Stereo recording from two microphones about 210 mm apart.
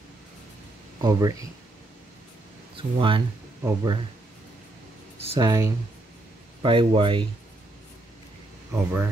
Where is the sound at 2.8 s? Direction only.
25° right (ahead or behind).